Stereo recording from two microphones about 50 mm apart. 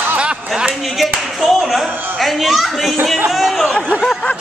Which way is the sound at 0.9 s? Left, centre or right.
Centre.